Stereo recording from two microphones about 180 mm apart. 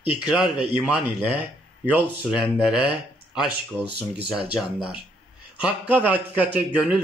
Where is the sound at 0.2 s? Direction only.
5° right (ahead or behind).